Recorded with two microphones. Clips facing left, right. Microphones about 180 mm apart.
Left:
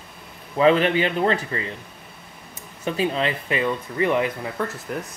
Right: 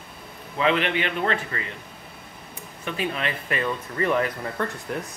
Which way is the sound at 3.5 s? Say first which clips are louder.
Left 3 dB; 5° left (ahead or behind).